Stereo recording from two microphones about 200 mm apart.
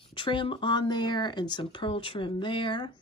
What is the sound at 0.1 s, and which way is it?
A woman's voice, 25° left (ahead or behind).